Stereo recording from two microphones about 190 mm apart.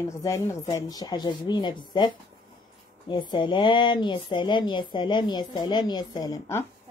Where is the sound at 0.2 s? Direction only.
15° left (ahead or behind).